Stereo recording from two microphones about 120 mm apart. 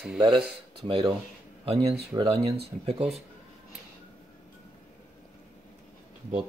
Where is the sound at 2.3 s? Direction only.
55° right (ahead or behind).